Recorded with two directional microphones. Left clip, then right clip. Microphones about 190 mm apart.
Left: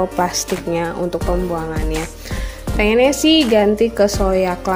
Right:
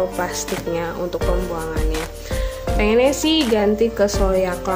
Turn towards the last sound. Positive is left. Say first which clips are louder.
# left 2 dB
turn(degrees=25)  # may be behind; listen again after turning